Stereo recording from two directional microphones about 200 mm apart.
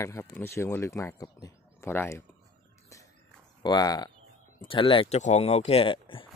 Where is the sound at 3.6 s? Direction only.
20° left (ahead or behind).